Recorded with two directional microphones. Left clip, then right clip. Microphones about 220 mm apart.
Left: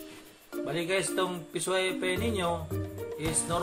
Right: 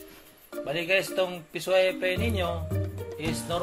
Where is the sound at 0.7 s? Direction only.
25° right (ahead or behind).